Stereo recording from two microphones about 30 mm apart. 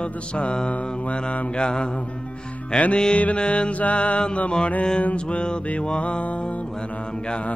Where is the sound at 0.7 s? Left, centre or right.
Left.